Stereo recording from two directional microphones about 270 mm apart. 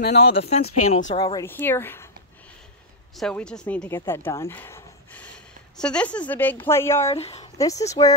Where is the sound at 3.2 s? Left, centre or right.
Centre.